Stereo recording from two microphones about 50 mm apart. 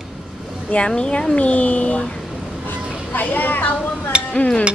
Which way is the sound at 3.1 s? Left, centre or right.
Left.